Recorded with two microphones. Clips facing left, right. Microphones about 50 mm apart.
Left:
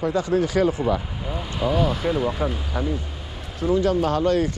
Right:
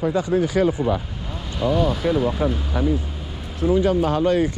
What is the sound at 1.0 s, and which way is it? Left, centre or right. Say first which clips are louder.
Speech: left 2 dB; centre.